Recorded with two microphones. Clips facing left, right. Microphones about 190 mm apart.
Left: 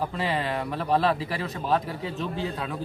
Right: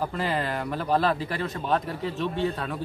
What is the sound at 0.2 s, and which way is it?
A man's voice, centre (ahead or behind).